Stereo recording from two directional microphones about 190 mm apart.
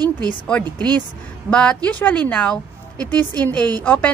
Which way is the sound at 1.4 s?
5° left (ahead or behind).